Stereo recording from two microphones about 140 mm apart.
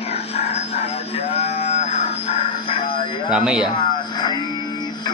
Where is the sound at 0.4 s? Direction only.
45° left (ahead or behind).